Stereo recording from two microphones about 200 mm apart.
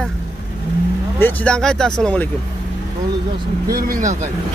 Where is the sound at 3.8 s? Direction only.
40° right (ahead or behind).